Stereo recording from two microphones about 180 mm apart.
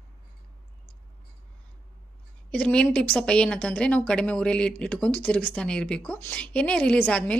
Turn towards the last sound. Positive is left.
turn(degrees=5)  # may be behind; listen again after turning